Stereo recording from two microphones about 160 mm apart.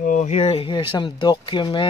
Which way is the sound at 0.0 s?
50° left (ahead or behind).